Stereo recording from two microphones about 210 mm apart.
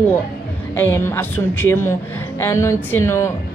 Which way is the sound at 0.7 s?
10° left (ahead or behind).